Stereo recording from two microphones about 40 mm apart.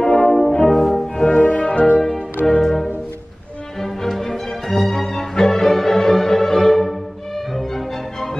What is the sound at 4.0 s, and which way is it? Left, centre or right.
Music, centre.